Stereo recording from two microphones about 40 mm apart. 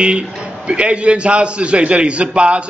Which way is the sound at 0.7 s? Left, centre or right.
Right.